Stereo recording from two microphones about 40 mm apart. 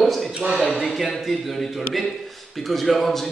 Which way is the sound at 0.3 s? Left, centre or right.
Right.